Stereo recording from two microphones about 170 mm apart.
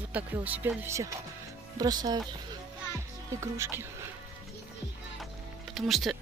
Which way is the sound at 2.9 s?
15° right (ahead or behind).